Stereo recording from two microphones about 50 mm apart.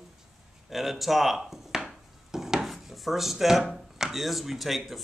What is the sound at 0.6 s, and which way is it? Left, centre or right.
Speech, centre.